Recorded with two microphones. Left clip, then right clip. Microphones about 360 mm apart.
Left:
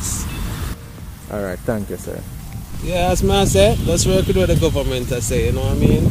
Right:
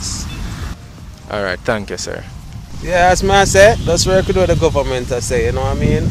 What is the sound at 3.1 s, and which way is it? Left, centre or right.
Speech, right.